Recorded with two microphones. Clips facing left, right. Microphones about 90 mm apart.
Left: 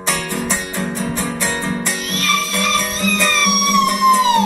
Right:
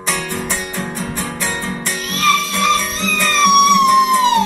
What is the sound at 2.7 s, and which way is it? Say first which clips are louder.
Music: left 1 dB; 15° left (ahead or behind).